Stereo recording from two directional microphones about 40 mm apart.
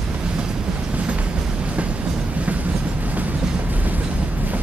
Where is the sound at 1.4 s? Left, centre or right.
Right.